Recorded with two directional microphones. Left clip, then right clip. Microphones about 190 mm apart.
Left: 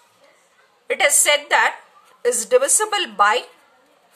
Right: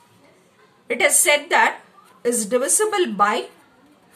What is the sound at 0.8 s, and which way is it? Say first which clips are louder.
Speech: left 1 dB; 35° left (ahead or behind).